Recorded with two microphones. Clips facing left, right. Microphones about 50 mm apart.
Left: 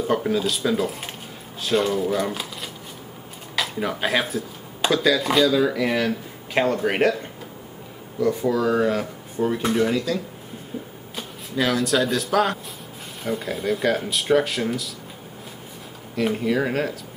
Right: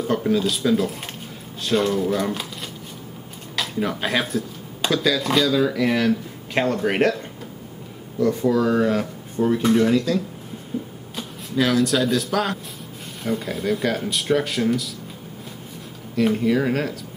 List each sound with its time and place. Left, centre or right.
0.0 s speech: centre
16.2 s speech: centre